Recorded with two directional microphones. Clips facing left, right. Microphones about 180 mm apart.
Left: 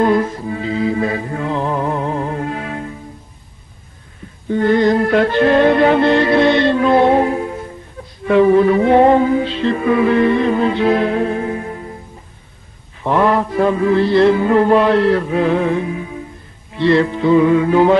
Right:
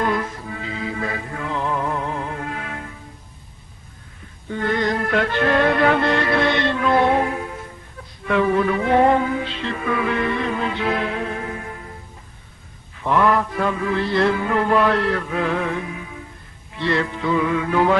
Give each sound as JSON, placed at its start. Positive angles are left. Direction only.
{"t": 0.0, "sound": "music", "side_deg": 30}
{"t": 4.5, "sound": "music", "side_deg": 30}
{"t": 13.0, "sound": "music", "side_deg": 30}